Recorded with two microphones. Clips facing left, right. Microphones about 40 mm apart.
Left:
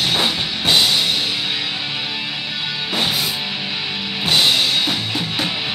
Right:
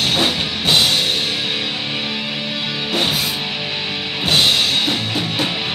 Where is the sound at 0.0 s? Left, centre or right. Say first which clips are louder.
Right 1 dB; right.